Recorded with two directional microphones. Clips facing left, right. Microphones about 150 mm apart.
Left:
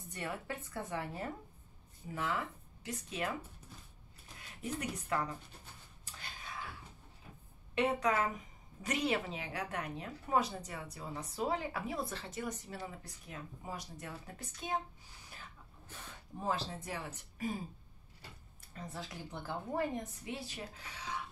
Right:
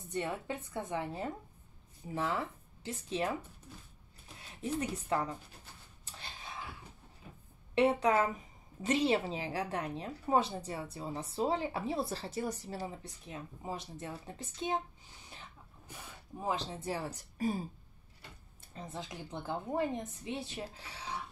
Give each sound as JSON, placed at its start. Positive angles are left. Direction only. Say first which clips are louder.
{"t": 0.1, "sound": "a woman's voice", "louder": "right 5 dB", "side_deg": -20}
{"t": 4.4, "sound": "speech", "louder": "right 4 dB", "side_deg": -25}
{"t": 6.2, "sound": "a sound", "louder": "right 1 dB", "side_deg": -25}
{"t": 7.7, "sound": "a woman's voice", "louder": "right 4 dB", "side_deg": -30}
{"t": 15.9, "sound": "a sound", "louder": "right 1 dB", "side_deg": -15}
{"t": 16.8, "sound": "speech", "louder": "right 5 dB", "side_deg": -35}
{"t": 18.7, "sound": "a woman's voice", "louder": "right 2 dB", "side_deg": -25}